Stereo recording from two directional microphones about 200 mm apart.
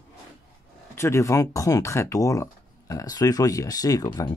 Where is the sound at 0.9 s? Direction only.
15° left (ahead or behind).